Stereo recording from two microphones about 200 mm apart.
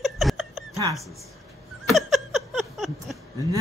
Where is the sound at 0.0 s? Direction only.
Centre (ahead or behind).